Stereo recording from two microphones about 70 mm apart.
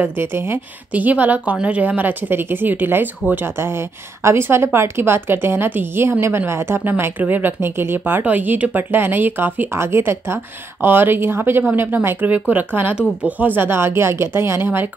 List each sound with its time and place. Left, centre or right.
0.0 s a woman's voice: right
0.9 s a woman's voice: right